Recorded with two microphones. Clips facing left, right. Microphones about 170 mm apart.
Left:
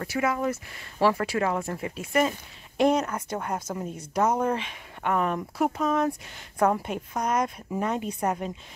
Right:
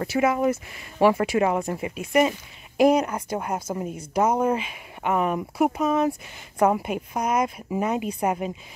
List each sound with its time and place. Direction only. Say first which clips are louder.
0.0 s speech: right 5 dB; 20° right (ahead or behind)